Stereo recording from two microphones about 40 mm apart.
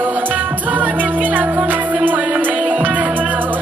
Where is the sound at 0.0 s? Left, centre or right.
Right.